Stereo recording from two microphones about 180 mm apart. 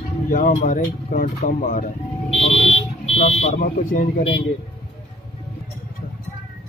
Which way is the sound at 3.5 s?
50° left (ahead or behind).